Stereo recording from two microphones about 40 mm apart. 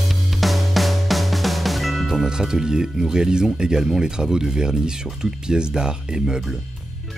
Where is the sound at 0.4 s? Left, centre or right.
Centre.